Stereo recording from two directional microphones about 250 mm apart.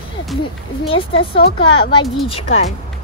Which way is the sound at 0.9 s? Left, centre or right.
Left.